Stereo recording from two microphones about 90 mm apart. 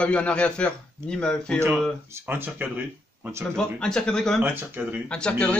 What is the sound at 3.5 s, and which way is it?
Speech, 10° left (ahead or behind).